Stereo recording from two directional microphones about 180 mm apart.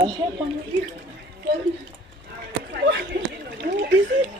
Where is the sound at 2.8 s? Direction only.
65° right (ahead or behind).